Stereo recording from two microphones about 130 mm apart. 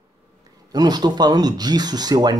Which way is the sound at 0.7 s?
30° right (ahead or behind).